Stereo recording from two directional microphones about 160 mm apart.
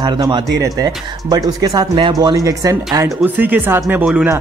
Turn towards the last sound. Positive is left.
turn(degrees=-10)  # may be behind; listen again after turning